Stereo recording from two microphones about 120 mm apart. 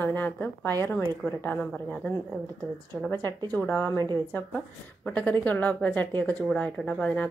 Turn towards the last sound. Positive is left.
turn(degrees=10)  # may be behind; listen again after turning